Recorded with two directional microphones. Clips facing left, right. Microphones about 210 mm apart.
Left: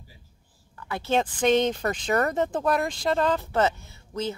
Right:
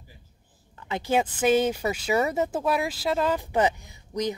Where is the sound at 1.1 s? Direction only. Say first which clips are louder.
Even; 10° right (ahead or behind).